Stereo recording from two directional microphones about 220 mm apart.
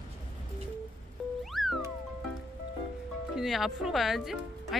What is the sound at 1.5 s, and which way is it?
Music, centre (ahead or behind).